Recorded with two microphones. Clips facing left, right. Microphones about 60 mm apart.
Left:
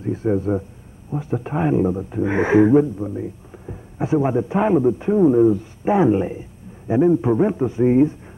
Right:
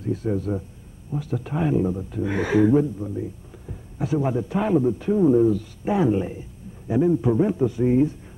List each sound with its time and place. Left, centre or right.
0.0 s speech: left